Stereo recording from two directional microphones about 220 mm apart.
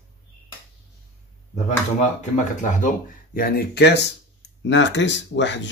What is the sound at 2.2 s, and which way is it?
Speech, 35° left (ahead or behind).